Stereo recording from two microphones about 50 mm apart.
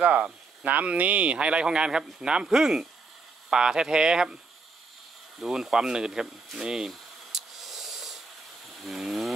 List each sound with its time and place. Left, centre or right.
0.0 s speech: right
5.4 s speech: centre
6.9 s a sound: centre